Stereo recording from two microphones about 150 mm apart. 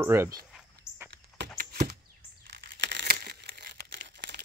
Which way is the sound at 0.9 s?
5° right (ahead or behind).